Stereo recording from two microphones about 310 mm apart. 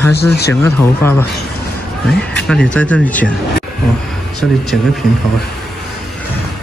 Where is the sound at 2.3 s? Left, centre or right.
Centre.